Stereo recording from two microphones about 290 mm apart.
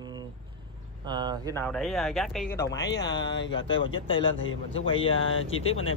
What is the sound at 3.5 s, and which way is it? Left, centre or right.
Speech, left.